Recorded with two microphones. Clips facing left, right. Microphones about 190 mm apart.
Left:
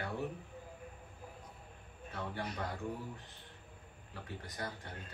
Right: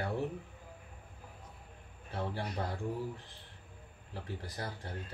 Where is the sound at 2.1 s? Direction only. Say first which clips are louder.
Right 4 dB; 30° right (ahead or behind).